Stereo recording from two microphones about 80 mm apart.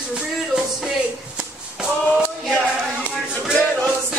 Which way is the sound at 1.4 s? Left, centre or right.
Centre.